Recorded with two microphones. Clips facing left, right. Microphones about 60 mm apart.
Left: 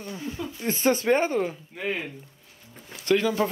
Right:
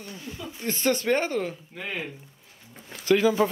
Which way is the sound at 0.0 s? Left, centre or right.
Left.